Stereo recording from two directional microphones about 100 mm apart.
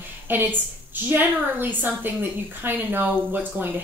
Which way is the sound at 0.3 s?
20° right (ahead or behind).